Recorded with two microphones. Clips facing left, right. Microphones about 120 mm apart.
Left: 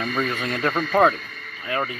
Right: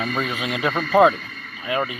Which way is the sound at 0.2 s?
5° right (ahead or behind).